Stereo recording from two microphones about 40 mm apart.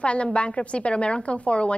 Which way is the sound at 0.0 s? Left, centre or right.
Left.